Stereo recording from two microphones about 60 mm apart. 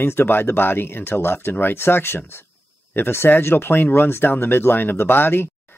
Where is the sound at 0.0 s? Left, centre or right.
Left.